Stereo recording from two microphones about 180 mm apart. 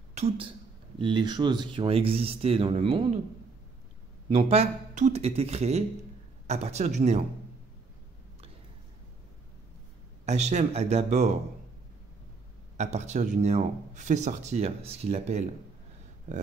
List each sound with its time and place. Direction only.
0.1 s a woman's voice: 35° right (ahead or behind)
4.3 s speech: 35° right (ahead or behind)
10.2 s speech: 40° right (ahead or behind)
12.7 s speech: 40° right (ahead or behind)